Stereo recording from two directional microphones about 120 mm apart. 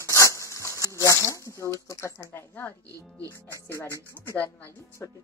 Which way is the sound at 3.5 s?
25° left (ahead or behind).